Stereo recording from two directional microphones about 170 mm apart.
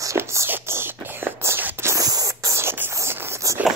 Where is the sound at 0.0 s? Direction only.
15° right (ahead or behind).